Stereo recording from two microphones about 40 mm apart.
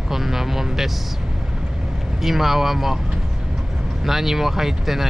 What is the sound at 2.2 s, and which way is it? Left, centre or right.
Speech, centre.